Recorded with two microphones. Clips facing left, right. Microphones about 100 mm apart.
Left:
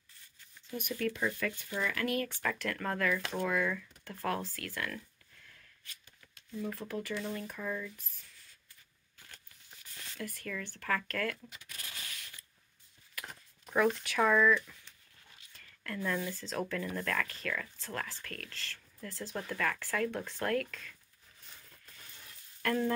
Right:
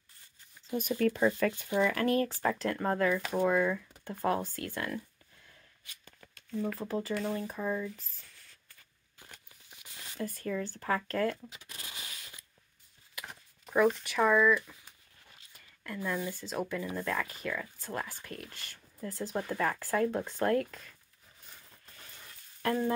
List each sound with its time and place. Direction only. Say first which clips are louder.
0.7 s speech: right 6 dB; 40° right (ahead or behind)
6.0 s shuffling cards: right 5 dB; 50° right (ahead or behind)
6.8 s speech: right 4 dB; 25° right (ahead or behind)
9.2 s a sound: right 3 dB; 15° right (ahead or behind)
10.2 s speech: right 6 dB; 30° right (ahead or behind)
13.3 s speech: right 3 dB; centre (ahead or behind)
15.5 s a sound: even; 10° right (ahead or behind)
16.3 s speech: right 1 dB; 5° right (ahead or behind); by 20.9 s 25° right (ahead or behind)